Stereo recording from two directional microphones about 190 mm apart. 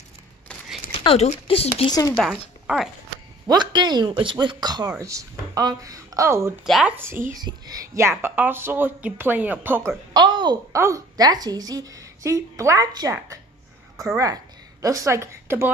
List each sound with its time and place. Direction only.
0.9 s speech: 30° left (ahead or behind)
2.6 s speech: centre (ahead or behind)
3.4 s speech: 20° right (ahead or behind)
6.6 s speech: centre (ahead or behind)
7.0 s speech: 10° right (ahead or behind)
10.1 s speech: 25° right (ahead or behind)